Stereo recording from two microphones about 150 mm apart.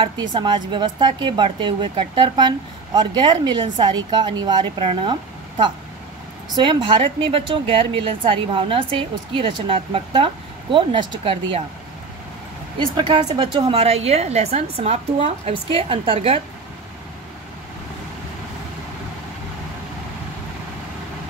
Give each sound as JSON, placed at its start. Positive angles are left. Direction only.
{"t": 0.0, "sound": "speech", "side_deg": -30}
{"t": 6.5, "sound": "speech", "side_deg": -35}
{"t": 12.7, "sound": "speech", "side_deg": -35}